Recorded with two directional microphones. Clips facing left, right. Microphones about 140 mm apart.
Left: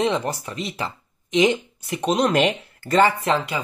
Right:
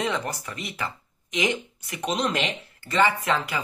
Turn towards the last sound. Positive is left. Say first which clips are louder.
# left 4 dB
turn(degrees=25)  # may be behind; listen again after turning